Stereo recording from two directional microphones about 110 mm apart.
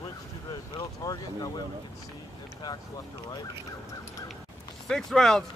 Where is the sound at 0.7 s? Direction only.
35° left (ahead or behind).